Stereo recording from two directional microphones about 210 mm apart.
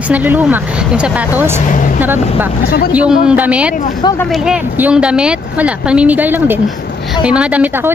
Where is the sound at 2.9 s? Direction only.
5° right (ahead or behind).